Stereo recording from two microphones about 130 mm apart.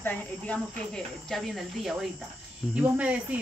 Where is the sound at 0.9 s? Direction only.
Centre (ahead or behind).